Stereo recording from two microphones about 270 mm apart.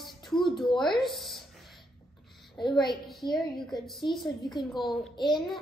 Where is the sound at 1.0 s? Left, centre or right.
Centre.